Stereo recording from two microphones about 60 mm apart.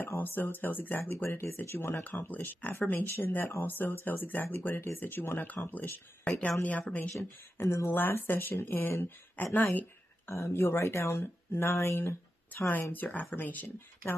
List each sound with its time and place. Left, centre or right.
0.2 s speech: left
2.1 s speech: left
6.2 s speech: centre
6.6 s speech: left
7.6 s speech: left
7.9 s speech: left
10.2 s speech: left